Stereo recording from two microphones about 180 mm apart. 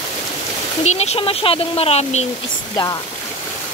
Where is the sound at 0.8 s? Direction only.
40° left (ahead or behind).